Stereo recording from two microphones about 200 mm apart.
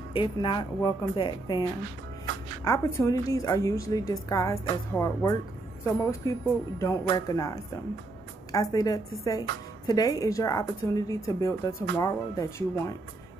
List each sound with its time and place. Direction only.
0.1 s a woman's voice: 25° left (ahead or behind)